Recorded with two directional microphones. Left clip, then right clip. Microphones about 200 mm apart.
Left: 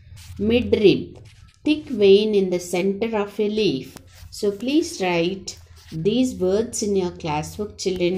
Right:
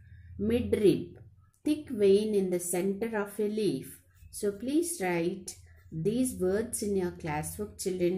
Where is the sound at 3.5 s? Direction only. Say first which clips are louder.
Left 9 dB; 5° right (ahead or behind).